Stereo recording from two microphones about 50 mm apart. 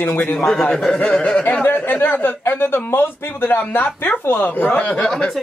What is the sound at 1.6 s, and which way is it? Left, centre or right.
A man's voice, left.